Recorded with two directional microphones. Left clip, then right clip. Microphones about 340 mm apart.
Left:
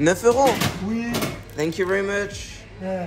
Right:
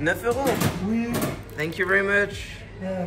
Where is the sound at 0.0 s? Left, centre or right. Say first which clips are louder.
Left 6 dB; centre.